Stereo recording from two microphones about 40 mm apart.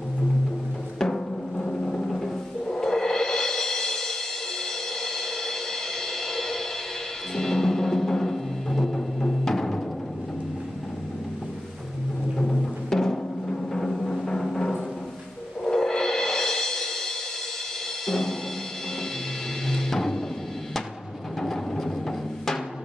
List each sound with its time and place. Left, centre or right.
0.9 s music: centre
12.9 s music: centre
14.1 s timpani: centre
15.6 s music: centre
18.0 s music: centre
19.7 s music: centre
21.4 s a sound: centre